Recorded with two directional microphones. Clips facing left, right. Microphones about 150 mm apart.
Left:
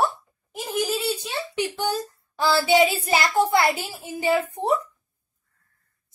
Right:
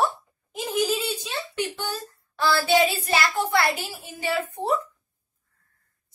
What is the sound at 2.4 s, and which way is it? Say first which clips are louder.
A woman's voice: left 2 dB; 20° left (ahead or behind).